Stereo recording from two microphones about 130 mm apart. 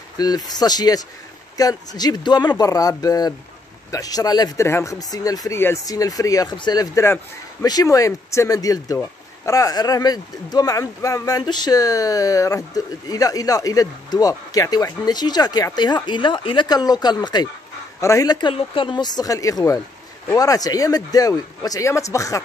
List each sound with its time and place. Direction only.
0.2 s speech: 30° left (ahead or behind)